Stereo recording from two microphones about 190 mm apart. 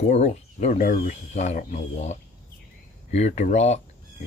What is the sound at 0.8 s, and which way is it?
Speech, 50° left (ahead or behind).